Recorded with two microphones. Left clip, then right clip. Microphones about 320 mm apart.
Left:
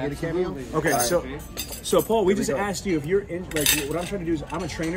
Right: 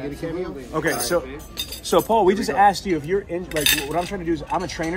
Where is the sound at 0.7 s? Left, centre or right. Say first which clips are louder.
Right 1 dB; centre.